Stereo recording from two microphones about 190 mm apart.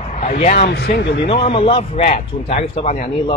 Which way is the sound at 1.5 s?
30° left (ahead or behind).